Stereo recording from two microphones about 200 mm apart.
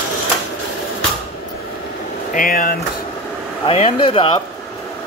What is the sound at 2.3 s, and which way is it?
Speech, 45° left (ahead or behind).